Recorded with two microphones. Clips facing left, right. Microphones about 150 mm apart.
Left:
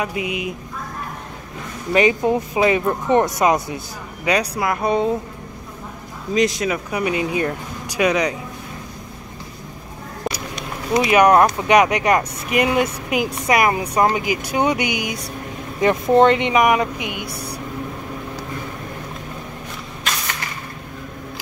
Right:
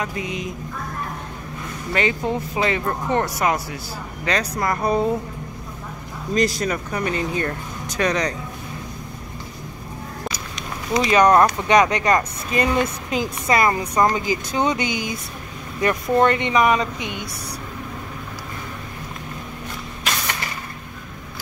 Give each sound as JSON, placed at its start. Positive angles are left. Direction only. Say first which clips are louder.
{"t": 0.0, "sound": "speech", "louder": "left 3 dB", "side_deg": 10}
{"t": 2.0, "sound": "speech", "louder": "left 6 dB", "side_deg": 15}
{"t": 6.3, "sound": "speech", "louder": "left 2 dB", "side_deg": 0}
{"t": 11.1, "sound": "speech", "louder": "left 1 dB", "side_deg": 10}